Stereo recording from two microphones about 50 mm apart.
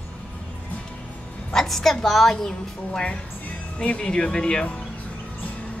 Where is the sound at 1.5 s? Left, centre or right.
Centre.